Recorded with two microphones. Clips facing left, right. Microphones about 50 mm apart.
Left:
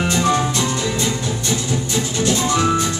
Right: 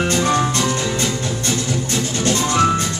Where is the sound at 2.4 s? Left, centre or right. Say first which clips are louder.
Right 3 dB; right.